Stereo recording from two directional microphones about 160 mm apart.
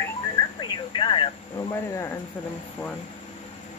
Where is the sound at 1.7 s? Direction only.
20° left (ahead or behind).